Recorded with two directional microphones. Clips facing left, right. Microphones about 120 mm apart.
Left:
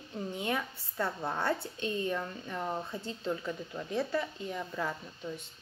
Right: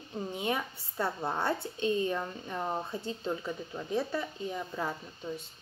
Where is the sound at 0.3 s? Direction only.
20° right (ahead or behind).